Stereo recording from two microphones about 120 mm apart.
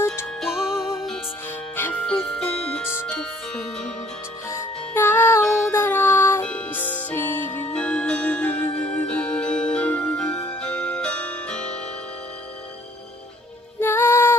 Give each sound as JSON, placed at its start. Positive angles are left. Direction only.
{"t": 0.0, "sound": "music", "side_deg": 20}
{"t": 0.4, "sound": "music", "side_deg": -5}
{"t": 1.8, "sound": "music", "side_deg": 15}
{"t": 4.5, "sound": "music", "side_deg": 20}
{"t": 13.7, "sound": "music", "side_deg": 20}